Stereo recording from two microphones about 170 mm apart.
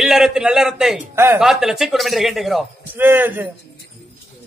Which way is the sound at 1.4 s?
Centre (ahead or behind).